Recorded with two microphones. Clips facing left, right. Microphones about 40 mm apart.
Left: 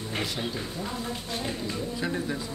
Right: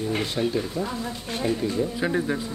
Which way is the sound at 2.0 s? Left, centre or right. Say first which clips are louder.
Right 4 dB; right.